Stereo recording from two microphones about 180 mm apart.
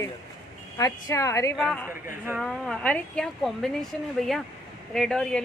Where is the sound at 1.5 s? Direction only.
5° left (ahead or behind).